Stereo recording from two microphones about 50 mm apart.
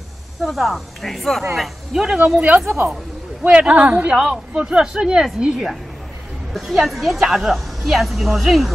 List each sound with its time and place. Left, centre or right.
0.4 s a woman's voice: centre
2.6 s a woman's voice: right
3.4 s speech: right
4.1 s a woman's voice: centre